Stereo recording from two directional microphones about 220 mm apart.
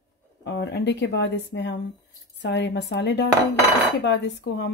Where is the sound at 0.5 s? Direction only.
50° left (ahead or behind).